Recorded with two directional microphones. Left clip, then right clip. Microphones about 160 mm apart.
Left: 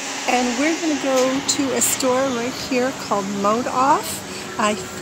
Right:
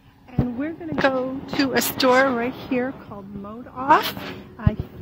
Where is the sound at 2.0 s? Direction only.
20° right (ahead or behind).